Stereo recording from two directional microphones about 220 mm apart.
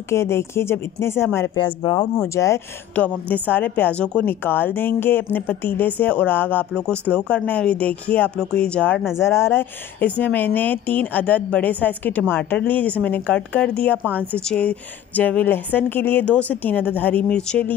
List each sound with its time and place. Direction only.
0.1 s speech: 10° left (ahead or behind)